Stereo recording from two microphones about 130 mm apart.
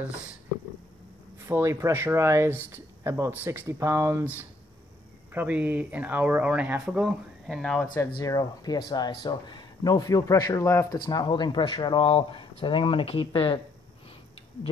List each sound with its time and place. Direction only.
1.5 s speech: 20° right (ahead or behind)
7.4 s speech: 5° left (ahead or behind)
8.0 s speech: 25° left (ahead or behind); by 13.6 s 45° left (ahead or behind)